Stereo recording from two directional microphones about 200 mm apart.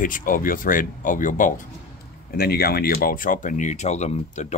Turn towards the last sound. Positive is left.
turn(degrees=35)  # may be behind; listen again after turning